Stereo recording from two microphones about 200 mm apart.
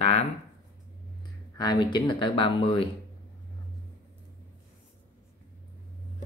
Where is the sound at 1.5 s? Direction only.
20° left (ahead or behind).